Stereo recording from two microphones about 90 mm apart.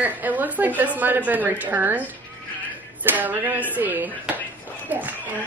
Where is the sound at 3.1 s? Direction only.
20° right (ahead or behind).